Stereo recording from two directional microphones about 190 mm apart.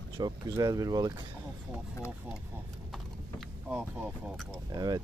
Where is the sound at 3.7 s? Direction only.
10° right (ahead or behind).